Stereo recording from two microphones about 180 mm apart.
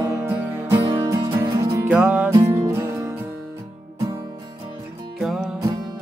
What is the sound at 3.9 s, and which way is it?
Music, 25° right (ahead or behind).